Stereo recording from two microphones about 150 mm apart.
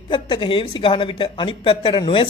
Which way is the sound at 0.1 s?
35° left (ahead or behind).